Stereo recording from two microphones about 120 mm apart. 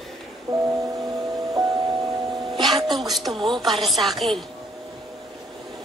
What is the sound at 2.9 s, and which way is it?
Speech, centre (ahead or behind).